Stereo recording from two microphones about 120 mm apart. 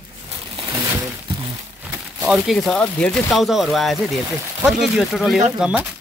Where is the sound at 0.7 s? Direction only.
25° right (ahead or behind).